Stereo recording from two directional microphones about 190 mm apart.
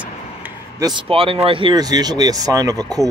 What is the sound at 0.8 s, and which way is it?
Speech, 25° right (ahead or behind).